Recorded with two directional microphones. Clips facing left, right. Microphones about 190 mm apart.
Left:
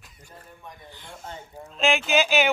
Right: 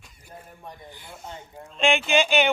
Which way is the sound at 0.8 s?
10° right (ahead or behind).